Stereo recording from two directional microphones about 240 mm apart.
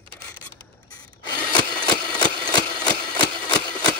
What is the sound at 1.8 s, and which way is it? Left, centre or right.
Engine, centre.